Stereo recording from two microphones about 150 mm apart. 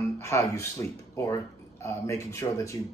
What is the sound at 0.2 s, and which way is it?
A man's voice, 20° left (ahead or behind).